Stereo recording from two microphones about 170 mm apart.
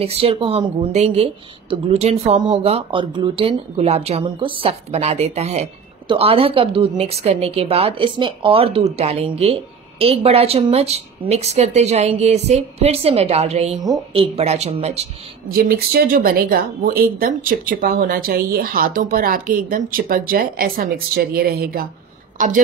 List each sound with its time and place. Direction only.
0.0 s a woman's voice: 35° right (ahead or behind)
15.4 s speech: 60° right (ahead or behind)